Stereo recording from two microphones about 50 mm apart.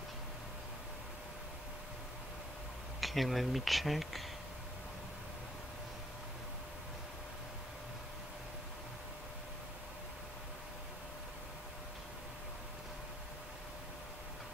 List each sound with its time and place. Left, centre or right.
3.0 s speech: centre